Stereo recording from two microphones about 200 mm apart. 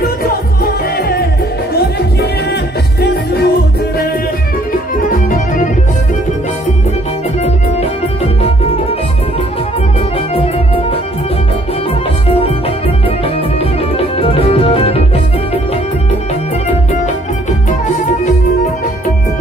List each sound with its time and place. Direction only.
3.0 s music: 55° left (ahead or behind)
10.3 s music: 30° left (ahead or behind)
13.9 s music: 30° left (ahead or behind)